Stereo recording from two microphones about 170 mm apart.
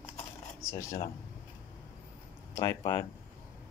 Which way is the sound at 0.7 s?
20° left (ahead or behind).